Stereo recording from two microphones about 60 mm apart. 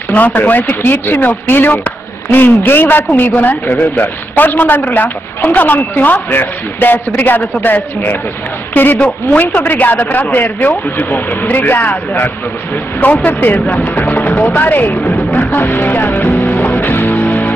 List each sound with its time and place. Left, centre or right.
0.1 s speech: left
9.0 s speech: left
14.0 s music: left